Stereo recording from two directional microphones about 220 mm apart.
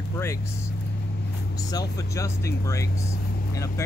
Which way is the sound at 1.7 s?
15° left (ahead or behind).